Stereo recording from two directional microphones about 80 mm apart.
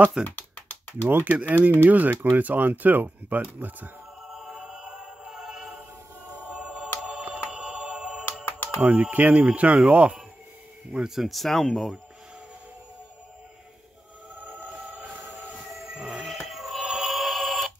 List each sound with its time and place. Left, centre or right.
0.2 s typing: centre
1.0 s speech: right
4.3 s music: centre
8.8 s speech: centre
10.9 s speech: centre
14.4 s music: centre
15.9 s a sound: centre
16.4 s music: centre